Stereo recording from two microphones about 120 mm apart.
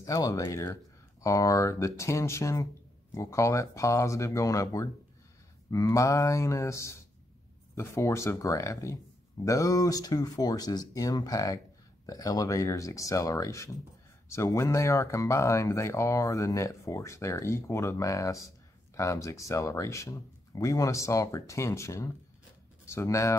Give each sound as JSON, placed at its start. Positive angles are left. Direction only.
{"t": 0.0, "sound": "speech", "side_deg": 30}